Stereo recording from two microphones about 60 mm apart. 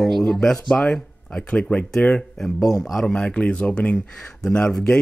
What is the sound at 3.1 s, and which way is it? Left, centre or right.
Speech, centre.